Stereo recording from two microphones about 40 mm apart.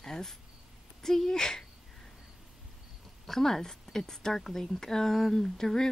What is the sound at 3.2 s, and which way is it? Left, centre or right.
A woman's voice, centre.